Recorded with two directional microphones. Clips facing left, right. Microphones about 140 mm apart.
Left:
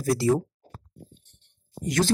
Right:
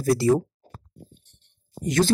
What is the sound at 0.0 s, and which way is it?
Speech, 35° right (ahead or behind).